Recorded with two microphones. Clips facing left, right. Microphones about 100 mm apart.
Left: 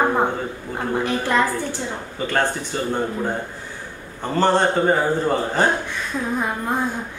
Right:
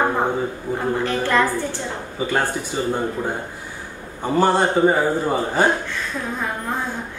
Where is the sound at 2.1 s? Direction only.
10° right (ahead or behind).